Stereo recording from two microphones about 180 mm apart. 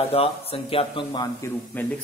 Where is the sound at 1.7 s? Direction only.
10° left (ahead or behind).